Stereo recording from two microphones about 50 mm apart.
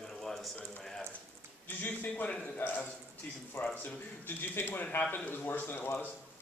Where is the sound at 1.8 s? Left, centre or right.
Left.